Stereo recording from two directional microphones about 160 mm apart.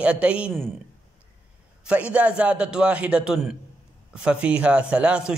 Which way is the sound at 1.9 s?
10° right (ahead or behind).